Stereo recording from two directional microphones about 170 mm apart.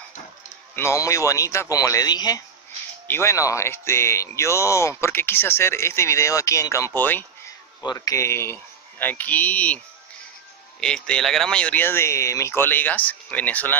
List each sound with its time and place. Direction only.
0.7 s a man's voice: 15° left (ahead or behind)
7.8 s speech: 20° left (ahead or behind)
10.8 s speech: 5° left (ahead or behind)